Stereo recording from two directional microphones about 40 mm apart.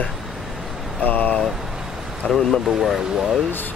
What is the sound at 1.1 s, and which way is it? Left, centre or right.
Speech, left.